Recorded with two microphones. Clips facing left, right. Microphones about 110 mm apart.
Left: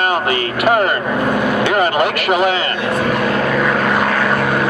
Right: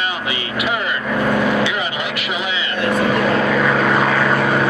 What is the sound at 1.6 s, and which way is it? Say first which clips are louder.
A man's voice: left 7 dB; 50° left (ahead or behind).